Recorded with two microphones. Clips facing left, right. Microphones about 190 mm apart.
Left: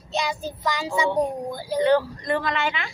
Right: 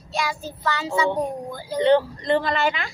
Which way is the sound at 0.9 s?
15° left (ahead or behind).